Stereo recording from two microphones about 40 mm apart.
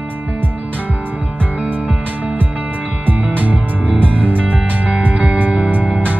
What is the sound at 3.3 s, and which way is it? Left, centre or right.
Music, right.